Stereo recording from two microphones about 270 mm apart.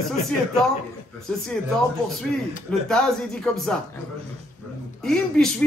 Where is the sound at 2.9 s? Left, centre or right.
Centre.